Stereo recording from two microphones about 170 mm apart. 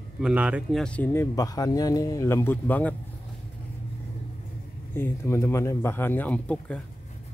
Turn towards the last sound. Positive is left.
turn(degrees=5)  # may be behind; listen again after turning